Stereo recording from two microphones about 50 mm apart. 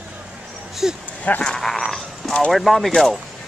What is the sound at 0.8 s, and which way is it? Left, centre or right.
Speech, centre.